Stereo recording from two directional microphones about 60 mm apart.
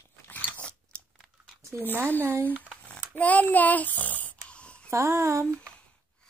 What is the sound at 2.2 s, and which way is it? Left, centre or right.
Speech, right.